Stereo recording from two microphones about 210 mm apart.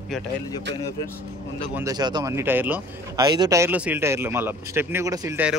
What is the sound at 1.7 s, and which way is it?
A man's voice, 15° right (ahead or behind).